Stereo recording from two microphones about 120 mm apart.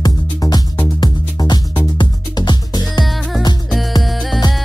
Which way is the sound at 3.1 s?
Centre (ahead or behind).